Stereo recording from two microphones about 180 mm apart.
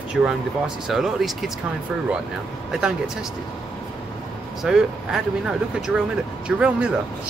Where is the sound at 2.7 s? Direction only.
5° right (ahead or behind).